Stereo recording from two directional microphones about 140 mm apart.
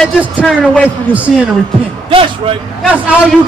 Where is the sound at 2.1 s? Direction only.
40° right (ahead or behind).